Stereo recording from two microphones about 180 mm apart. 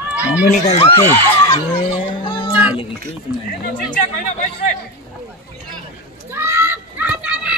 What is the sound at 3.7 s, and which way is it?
Speech, 50° left (ahead or behind).